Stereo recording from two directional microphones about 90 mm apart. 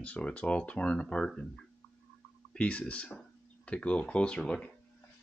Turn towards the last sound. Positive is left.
turn(degrees=10)  # may be behind; listen again after turning